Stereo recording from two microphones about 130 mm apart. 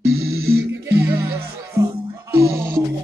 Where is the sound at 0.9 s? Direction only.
20° right (ahead or behind).